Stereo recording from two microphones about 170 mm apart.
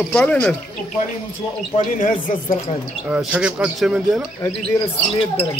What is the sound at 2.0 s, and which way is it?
Speech, 50° left (ahead or behind).